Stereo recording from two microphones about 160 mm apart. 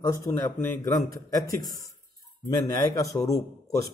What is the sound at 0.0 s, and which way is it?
Speech, 20° left (ahead or behind).